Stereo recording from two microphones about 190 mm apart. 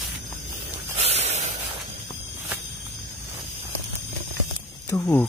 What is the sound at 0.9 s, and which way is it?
Snort, 35° right (ahead or behind).